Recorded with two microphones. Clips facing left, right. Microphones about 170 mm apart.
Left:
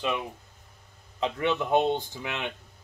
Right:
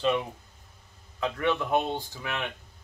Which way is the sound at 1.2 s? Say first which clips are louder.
Left 1 dB; 20° left (ahead or behind).